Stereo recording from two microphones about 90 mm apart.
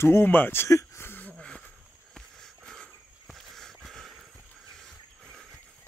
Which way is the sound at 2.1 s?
5° left (ahead or behind).